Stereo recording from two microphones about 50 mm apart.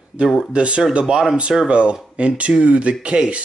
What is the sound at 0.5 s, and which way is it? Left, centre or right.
Speech, right.